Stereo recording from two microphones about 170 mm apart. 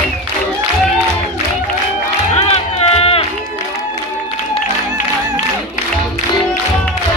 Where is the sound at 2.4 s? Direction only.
40° left (ahead or behind).